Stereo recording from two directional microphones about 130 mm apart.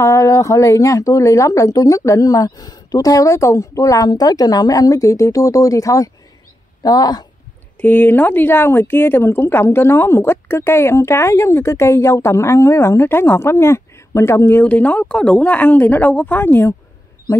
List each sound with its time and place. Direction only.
0.0 s a woman's voice: 25° left (ahead or behind)
7.8 s a woman's voice: 15° left (ahead or behind)